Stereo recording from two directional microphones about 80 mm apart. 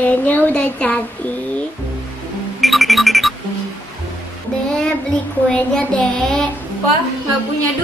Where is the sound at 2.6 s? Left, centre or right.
Centre.